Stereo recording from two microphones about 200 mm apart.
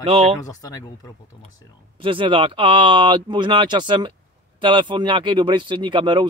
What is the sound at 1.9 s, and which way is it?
Speech, 25° right (ahead or behind).